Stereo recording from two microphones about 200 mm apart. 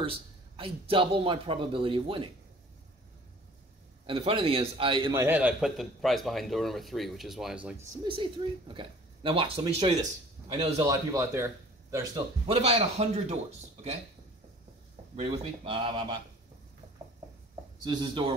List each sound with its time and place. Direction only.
0.0 s a man's voice: 25° right (ahead or behind)
4.0 s a man's voice: 25° right (ahead or behind)
5.2 s a man's voice: 10° right (ahead or behind)
8.0 s a man's voice: 25° right (ahead or behind)
10.9 s speech: 15° right (ahead or behind)
12.4 s speech: 30° right (ahead or behind)
15.1 s a man's voice: 30° right (ahead or behind)
17.8 s a man's voice: 20° right (ahead or behind)